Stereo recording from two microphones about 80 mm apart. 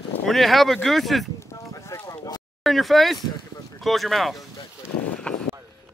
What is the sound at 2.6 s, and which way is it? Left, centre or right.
Speech, centre.